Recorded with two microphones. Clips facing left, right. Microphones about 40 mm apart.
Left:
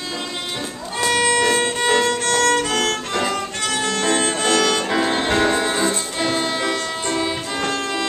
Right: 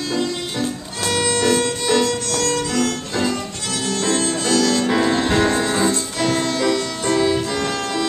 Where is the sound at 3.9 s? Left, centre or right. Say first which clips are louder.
Right 1 dB; left.